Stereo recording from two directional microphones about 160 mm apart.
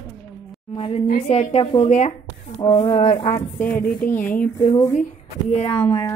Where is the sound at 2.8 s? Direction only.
40° left (ahead or behind).